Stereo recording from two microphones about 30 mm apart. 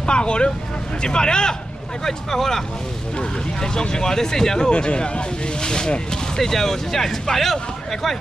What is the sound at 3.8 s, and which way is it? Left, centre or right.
Speech, left.